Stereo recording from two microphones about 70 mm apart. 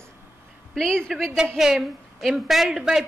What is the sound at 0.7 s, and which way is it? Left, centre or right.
Speech, centre.